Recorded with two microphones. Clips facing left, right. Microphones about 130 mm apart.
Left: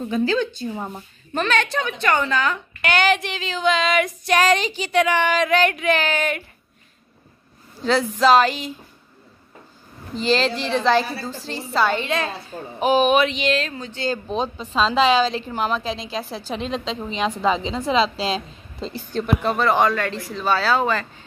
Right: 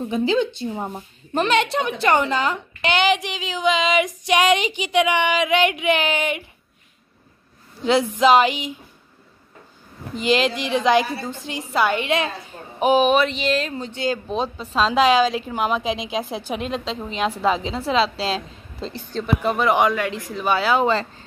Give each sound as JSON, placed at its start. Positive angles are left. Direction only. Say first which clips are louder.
{"t": 0.0, "sound": "a woman's voice", "louder": "right 1 dB", "side_deg": -20}
{"t": 7.8, "sound": "a woman's voice", "louder": "right 1 dB", "side_deg": -15}
{"t": 10.1, "sound": "a woman's voice", "louder": "right 1 dB", "side_deg": -10}
{"t": 13.7, "sound": "speech", "louder": "right 3 dB", "side_deg": -20}
{"t": 14.0, "sound": "a woman's voice", "louder": "even", "side_deg": -5}
{"t": 19.4, "sound": "a woman's voice", "louder": "right 1 dB", "side_deg": -15}